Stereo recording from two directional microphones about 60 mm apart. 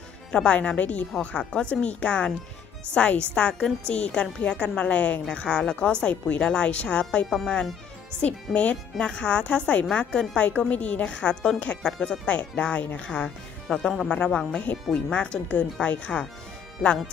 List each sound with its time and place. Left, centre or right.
0.3 s a woman's voice: centre
13.7 s a woman's voice: centre